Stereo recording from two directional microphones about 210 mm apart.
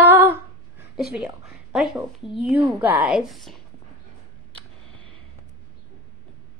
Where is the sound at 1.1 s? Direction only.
Centre (ahead or behind).